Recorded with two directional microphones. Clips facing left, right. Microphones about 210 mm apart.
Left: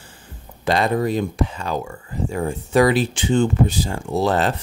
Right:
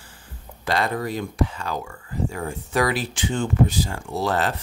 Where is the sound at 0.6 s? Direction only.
20° left (ahead or behind).